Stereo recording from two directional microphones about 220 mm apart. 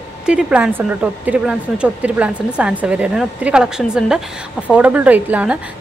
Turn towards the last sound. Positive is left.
turn(degrees=-5)  # may be behind; listen again after turning